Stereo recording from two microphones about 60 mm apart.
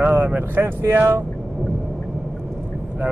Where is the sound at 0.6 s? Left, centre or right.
Right.